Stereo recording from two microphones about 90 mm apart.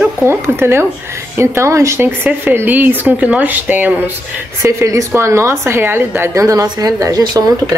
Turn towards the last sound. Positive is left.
turn(degrees=-45)  # may be behind; listen again after turning